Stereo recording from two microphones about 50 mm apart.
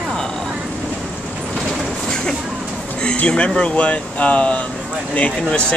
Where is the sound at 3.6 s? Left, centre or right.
Left.